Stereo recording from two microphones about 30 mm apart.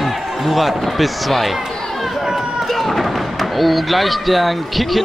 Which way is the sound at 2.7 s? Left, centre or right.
Centre.